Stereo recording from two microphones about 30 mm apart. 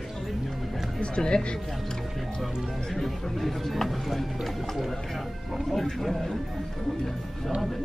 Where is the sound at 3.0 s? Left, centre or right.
Centre.